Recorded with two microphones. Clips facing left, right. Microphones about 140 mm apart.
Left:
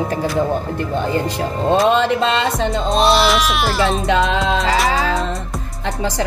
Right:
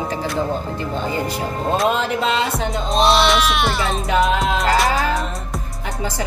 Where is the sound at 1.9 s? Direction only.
90° left.